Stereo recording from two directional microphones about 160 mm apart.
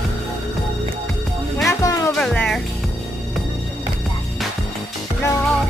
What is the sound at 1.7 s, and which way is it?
Music, 20° left (ahead or behind).